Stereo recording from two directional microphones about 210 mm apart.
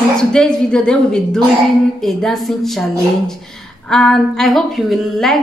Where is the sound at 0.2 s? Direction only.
5° left (ahead or behind).